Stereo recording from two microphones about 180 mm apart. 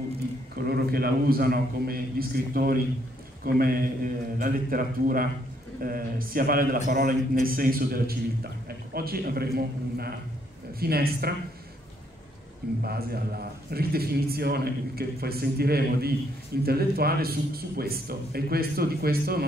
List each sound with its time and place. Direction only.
0.6 s a man's voice: 60° right (ahead or behind)
12.8 s a man's voice: 60° right (ahead or behind)